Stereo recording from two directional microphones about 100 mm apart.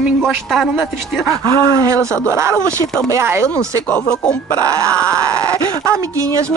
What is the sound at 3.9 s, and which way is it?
Speech, 10° left (ahead or behind).